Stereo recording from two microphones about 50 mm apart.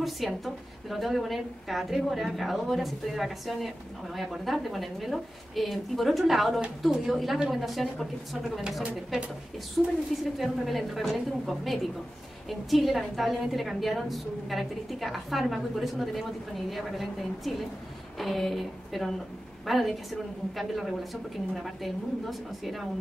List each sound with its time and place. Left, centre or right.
0.2 s a woman's voice: centre
8.8 s a woman's voice: centre
9.8 s a woman's voice: centre